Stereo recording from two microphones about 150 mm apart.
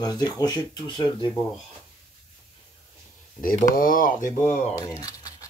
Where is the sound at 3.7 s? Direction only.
70° left (ahead or behind); by 4.7 s 50° left (ahead or behind).